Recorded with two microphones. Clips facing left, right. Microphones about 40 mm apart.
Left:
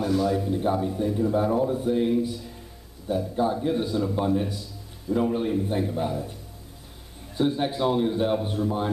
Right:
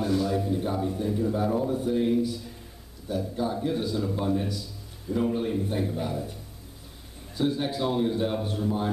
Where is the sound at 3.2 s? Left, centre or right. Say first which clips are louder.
Left 3 dB; centre.